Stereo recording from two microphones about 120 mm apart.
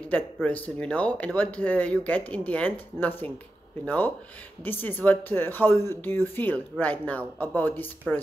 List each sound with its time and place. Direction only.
0.1 s speech: 10° left (ahead or behind)